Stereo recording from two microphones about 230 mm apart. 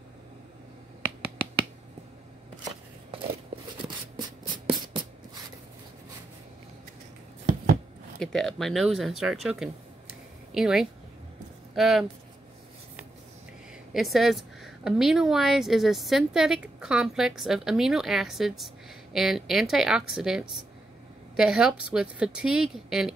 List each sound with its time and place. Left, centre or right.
2.6 s scissors: right
3.8 s a sound: centre
8.2 s a woman's voice: centre
13.9 s a woman's voice: centre